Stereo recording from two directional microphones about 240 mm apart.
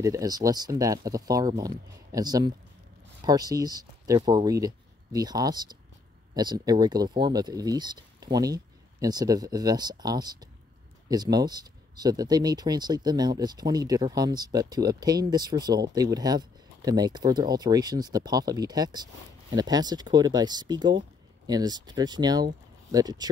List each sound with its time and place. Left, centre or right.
0.0 s speech: centre